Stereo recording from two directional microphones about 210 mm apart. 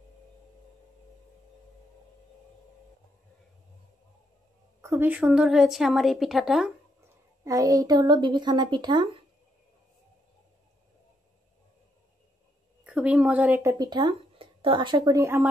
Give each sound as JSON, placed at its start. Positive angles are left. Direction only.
{"t": 4.8, "sound": "a woman's voice", "side_deg": -10}
{"t": 7.4, "sound": "speech", "side_deg": -15}
{"t": 12.8, "sound": "speech", "side_deg": -5}